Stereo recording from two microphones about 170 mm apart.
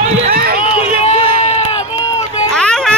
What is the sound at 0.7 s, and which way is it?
Run, 40° left (ahead or behind).